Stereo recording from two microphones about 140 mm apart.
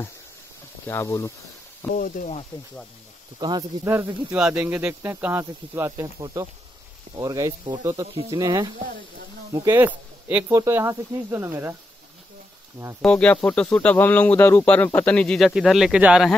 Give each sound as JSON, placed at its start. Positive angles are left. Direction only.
{"t": 0.8, "sound": "speech", "side_deg": 20}
{"t": 2.0, "sound": "speech", "side_deg": 70}
{"t": 3.3, "sound": "speech", "side_deg": -30}
{"t": 3.8, "sound": "speech", "side_deg": -20}
{"t": 4.3, "sound": "speech", "side_deg": -10}
{"t": 9.8, "sound": "speech", "side_deg": -10}
{"t": 10.5, "sound": "speech", "side_deg": -20}
{"t": 13.0, "sound": "speech", "side_deg": 10}